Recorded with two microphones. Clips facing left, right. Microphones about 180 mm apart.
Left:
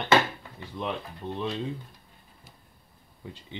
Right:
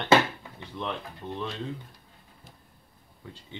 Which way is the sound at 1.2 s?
10° left (ahead or behind).